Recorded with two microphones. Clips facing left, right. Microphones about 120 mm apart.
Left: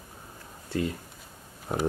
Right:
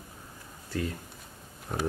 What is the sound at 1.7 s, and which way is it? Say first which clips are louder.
Speech: left 4 dB; 40° left (ahead or behind).